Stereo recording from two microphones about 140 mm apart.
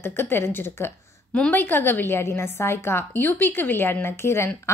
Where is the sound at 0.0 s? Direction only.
15° left (ahead or behind).